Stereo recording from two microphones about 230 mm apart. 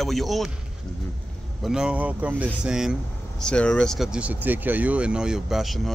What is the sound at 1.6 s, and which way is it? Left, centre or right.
Speech, centre.